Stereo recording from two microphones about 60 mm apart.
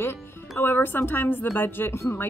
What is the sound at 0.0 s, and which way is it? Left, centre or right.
Speech, left.